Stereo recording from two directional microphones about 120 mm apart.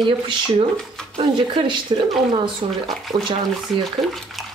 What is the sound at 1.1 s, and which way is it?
Speech, 45° right (ahead or behind).